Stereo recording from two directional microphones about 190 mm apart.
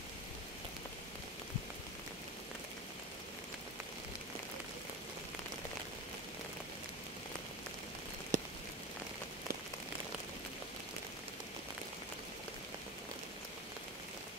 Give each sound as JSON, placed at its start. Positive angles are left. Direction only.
{"t": 8.3, "sound": "rain on surface", "side_deg": -40}